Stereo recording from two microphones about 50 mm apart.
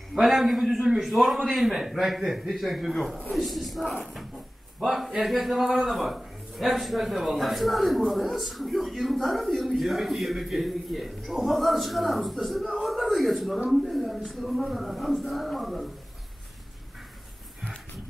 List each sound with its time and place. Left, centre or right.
0.1 s a man's voice: centre